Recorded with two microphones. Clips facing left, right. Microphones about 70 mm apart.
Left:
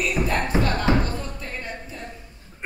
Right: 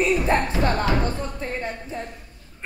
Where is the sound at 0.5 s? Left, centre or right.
Left.